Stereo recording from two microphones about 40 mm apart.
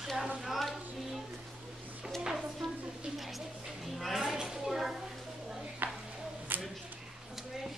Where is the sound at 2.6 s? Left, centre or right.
Centre.